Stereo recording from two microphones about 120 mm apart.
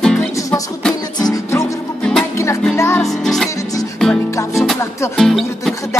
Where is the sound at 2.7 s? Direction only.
20° left (ahead or behind).